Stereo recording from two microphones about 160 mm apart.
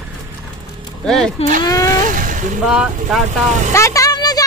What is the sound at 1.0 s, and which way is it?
Speech, centre (ahead or behind).